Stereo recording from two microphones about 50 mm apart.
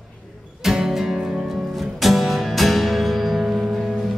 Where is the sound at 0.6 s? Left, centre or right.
Centre.